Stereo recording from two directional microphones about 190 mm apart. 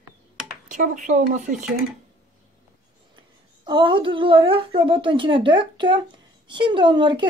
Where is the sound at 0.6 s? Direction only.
40° right (ahead or behind).